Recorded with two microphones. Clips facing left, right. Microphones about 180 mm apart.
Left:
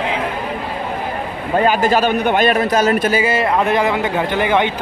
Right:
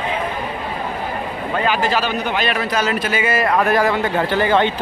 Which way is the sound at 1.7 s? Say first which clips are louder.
Left 4 dB; 45° left (ahead or behind).